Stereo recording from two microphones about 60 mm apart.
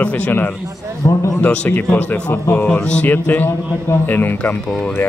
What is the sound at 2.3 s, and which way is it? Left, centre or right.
Speech, left.